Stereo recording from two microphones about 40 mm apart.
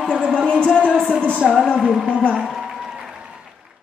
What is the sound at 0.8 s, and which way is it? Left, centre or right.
Speech, left.